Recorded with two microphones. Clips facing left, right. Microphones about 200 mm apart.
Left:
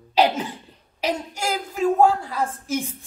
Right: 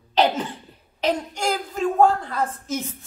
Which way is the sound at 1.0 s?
10° left (ahead or behind).